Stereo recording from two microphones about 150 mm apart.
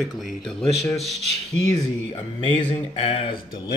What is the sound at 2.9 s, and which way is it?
Speech, 40° left (ahead or behind).